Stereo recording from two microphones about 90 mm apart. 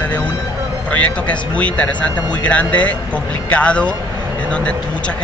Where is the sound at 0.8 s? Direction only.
15° left (ahead or behind).